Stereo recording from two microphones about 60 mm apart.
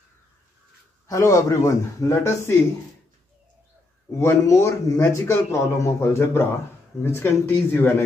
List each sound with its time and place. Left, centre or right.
1.0 s speech: left
4.2 s speech: left
7.4 s a man's voice: left